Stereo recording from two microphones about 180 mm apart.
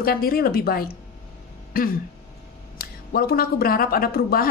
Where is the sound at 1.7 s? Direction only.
55° left (ahead or behind).